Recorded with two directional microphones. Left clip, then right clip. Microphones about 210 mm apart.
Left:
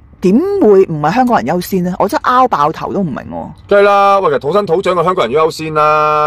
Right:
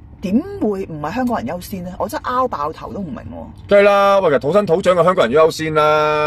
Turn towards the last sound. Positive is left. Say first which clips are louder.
# left 4 dB
turn(degrees=5)  # may be behind; listen again after turning